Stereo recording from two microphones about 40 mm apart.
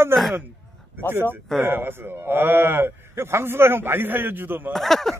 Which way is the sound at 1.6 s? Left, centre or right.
Right.